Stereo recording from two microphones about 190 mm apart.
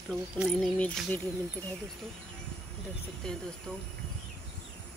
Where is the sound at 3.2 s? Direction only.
5° left (ahead or behind).